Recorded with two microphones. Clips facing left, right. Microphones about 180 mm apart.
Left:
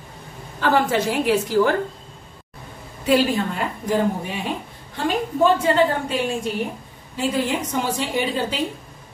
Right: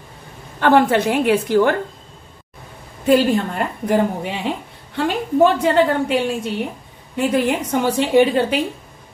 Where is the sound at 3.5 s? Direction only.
65° right (ahead or behind).